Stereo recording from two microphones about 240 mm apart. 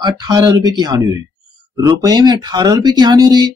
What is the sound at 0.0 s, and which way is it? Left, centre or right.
Speech, centre.